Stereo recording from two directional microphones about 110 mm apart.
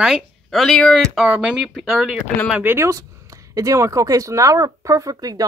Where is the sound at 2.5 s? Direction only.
20° right (ahead or behind).